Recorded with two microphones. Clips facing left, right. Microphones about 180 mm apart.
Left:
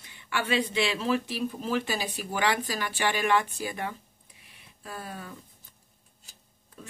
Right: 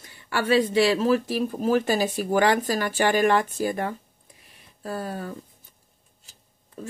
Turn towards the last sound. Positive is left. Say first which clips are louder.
# right 10 dB
turn(degrees=-45)  # may be behind; listen again after turning